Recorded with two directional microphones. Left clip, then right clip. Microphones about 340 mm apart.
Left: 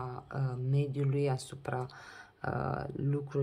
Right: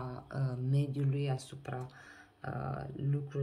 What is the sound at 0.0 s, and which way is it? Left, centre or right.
Speech, centre.